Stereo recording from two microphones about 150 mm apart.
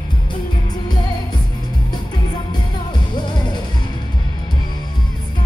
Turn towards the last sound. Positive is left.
turn(degrees=30)  # may be behind; listen again after turning